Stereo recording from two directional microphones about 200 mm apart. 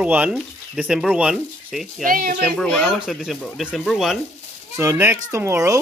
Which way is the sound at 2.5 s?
5° left (ahead or behind).